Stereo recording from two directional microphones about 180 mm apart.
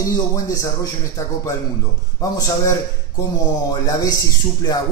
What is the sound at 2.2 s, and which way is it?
Speech, 20° left (ahead or behind).